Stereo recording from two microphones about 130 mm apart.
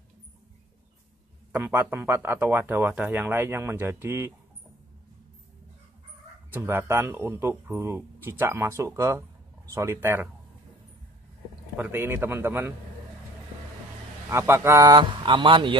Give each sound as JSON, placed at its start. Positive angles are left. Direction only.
{"t": 1.5, "sound": "speech", "side_deg": -15}
{"t": 6.5, "sound": "speech", "side_deg": -15}
{"t": 11.7, "sound": "speech", "side_deg": -15}
{"t": 14.3, "sound": "a man's voice", "side_deg": -20}